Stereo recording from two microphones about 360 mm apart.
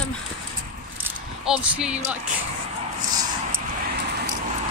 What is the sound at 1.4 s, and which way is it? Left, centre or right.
Speech, centre.